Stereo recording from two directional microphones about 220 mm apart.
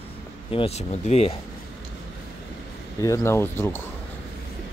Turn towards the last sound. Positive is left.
turn(degrees=10)  # may be behind; listen again after turning